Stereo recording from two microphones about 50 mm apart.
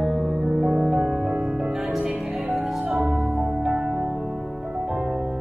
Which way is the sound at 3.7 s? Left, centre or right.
Right.